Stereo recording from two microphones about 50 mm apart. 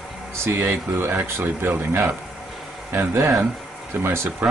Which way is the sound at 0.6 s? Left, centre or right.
Right.